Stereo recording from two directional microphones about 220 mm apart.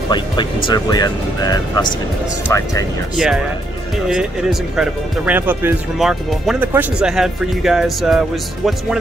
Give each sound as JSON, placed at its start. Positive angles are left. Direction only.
{"t": 0.1, "sound": "speech", "side_deg": 20}
{"t": 3.2, "sound": "speech", "side_deg": -5}